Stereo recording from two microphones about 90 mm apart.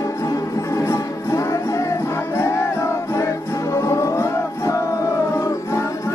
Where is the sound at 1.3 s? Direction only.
35° left (ahead or behind).